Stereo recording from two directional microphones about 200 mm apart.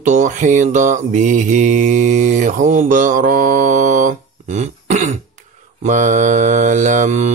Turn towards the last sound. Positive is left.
turn(degrees=-35)  # may be behind; listen again after turning